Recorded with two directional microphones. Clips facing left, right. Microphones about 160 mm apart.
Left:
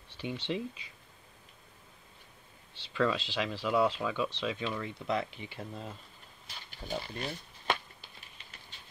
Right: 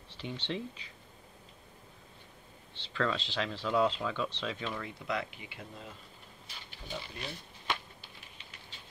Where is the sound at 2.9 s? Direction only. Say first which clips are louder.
Left 3 dB; 10° left (ahead or behind).